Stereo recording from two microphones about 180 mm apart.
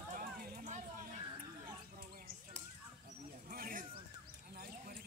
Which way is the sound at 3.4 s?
50° right (ahead or behind).